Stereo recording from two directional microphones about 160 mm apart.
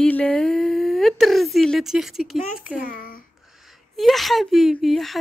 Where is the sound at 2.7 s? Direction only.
60° left (ahead or behind).